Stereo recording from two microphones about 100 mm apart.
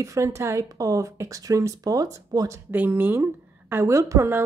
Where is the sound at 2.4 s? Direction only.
20° right (ahead or behind).